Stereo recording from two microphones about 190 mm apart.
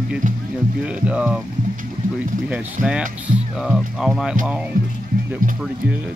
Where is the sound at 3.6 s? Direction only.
Centre (ahead or behind).